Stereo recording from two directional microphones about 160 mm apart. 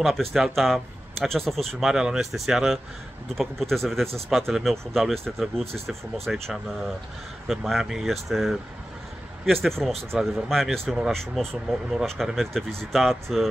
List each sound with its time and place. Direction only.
0.0 s speech: centre (ahead or behind)